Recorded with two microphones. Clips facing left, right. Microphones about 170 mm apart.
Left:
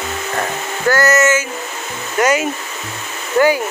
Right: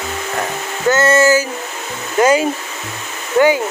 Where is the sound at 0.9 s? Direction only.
25° right (ahead or behind).